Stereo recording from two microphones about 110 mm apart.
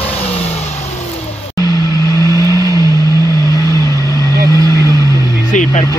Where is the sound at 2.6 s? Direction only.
30° right (ahead or behind).